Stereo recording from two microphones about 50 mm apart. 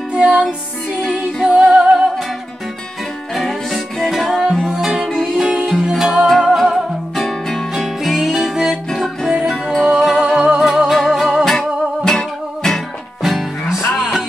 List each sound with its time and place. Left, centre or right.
0.1 s music: centre
3.3 s music: centre
6.2 s music: centre
7.7 s music: centre
9.8 s music: centre
10.3 s music: centre
10.6 s music: centre
11.4 s music: centre
13.2 s music: centre